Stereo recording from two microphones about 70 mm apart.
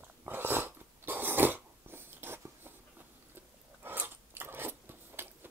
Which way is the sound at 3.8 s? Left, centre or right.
Right.